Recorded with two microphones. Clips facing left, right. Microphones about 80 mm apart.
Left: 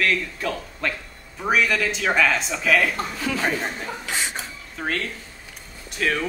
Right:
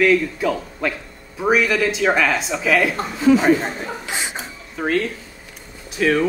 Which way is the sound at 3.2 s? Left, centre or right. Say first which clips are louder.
Right 12 dB; centre.